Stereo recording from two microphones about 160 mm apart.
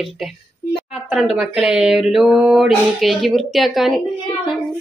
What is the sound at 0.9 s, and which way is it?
Speech, centre (ahead or behind).